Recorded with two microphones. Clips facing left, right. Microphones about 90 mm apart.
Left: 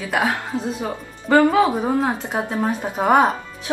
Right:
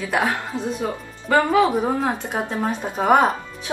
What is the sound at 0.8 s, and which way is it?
Speech, 20° left (ahead or behind).